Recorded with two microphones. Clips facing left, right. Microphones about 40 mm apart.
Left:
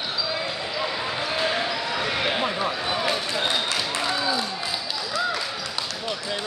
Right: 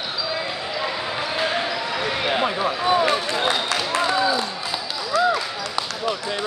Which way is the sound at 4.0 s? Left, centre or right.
Centre.